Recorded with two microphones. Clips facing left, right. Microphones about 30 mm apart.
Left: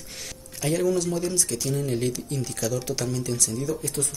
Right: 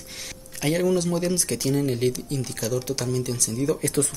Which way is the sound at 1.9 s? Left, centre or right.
Centre.